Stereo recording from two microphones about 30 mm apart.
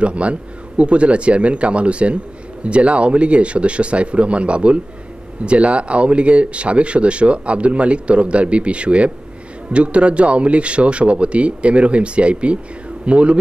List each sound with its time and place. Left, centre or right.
0.0 s speech: right